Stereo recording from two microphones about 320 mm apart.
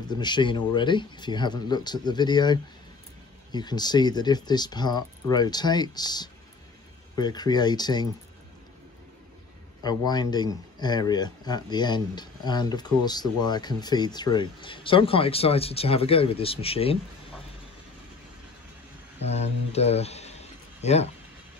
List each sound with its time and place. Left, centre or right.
0.1 s speech: centre
9.8 s speech: centre
19.2 s speech: centre